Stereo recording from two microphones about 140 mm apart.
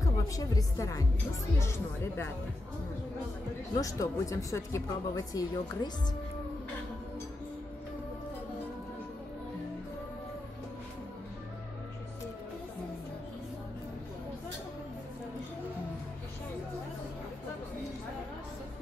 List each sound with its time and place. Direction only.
0.0 s a woman's voice: 25° left (ahead or behind)
3.8 s speech: 25° left (ahead or behind)